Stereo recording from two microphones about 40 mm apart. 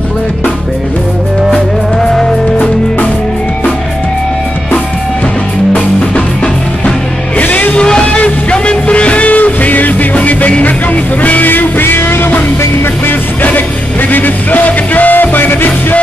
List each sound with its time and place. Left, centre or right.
1.5 s music: centre
7.7 s music: left
11.4 s music: left
13.4 s music: left